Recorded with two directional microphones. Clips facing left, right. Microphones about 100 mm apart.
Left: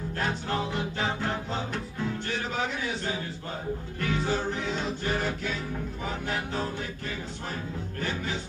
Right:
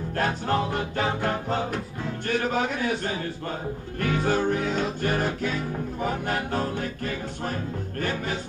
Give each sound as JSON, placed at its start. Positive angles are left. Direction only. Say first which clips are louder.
{"t": 0.2, "sound": "music", "louder": "right 5 dB", "side_deg": -50}
{"t": 2.2, "sound": "a man's voice", "louder": "right 6 dB", "side_deg": -50}
{"t": 4.0, "sound": "music", "louder": "right 5 dB", "side_deg": -55}
{"t": 8.0, "sound": "music", "louder": "right 4 dB", "side_deg": -50}